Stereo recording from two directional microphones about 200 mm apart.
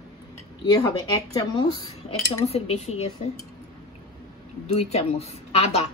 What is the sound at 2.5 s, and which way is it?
Speech, 30° left (ahead or behind).